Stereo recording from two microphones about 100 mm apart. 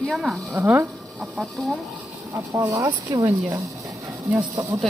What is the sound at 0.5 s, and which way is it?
Speech, 25° right (ahead or behind).